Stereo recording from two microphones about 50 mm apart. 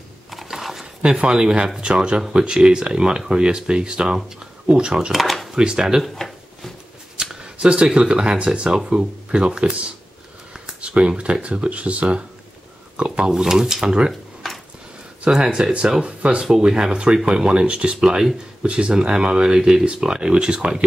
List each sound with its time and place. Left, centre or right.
0.3 s mechanisms: centre
1.0 s speech: centre
5.1 s a sound: centre
5.5 s speech: centre
6.1 s a sound: centre
7.2 s speech: centre
13.3 s speech: centre
14.4 s a sound: centre
15.2 s speech: centre
16.4 s speech: centre